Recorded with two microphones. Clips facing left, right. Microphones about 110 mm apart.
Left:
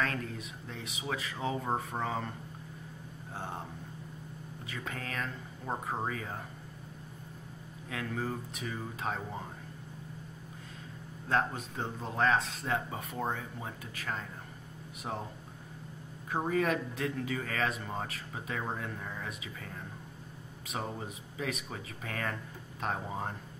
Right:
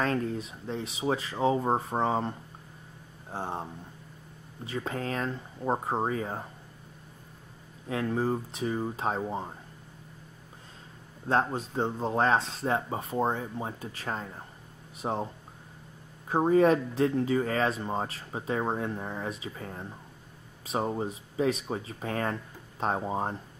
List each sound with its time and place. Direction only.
0.0 s speech: 30° right (ahead or behind)
4.6 s speech: 30° right (ahead or behind)
7.9 s speech: 30° right (ahead or behind)
11.2 s speech: 30° right (ahead or behind)
16.3 s speech: 30° right (ahead or behind)